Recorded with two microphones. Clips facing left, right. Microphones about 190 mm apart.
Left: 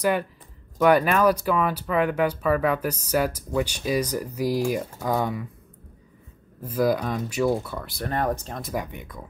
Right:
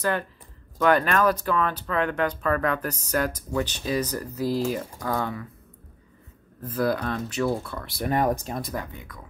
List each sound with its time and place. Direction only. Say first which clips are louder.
0.7 s speech: left 2 dB; 10° left (ahead or behind)
6.6 s speech: left 2 dB; 10° left (ahead or behind)
8.0 s speech: right 3 dB; 10° right (ahead or behind)
8.7 s speech: left 3 dB; 20° left (ahead or behind)